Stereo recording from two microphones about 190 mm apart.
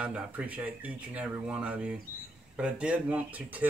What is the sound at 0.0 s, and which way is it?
Speech, 5° right (ahead or behind).